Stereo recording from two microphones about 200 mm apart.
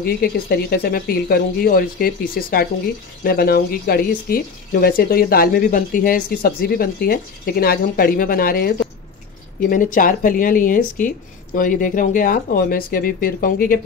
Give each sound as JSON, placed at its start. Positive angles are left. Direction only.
{"t": 0.0, "sound": "speech", "side_deg": 50}